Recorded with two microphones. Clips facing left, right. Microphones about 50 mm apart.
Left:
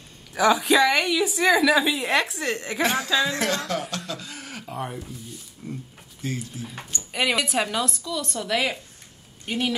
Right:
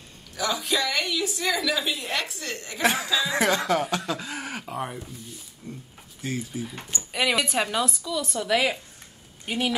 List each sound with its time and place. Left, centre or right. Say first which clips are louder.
0.3 s a woman's voice: left 8 dB; left
2.8 s speech: right 1 dB; centre
3.3 s speech: right 3 dB; centre
4.6 s speech: even; centre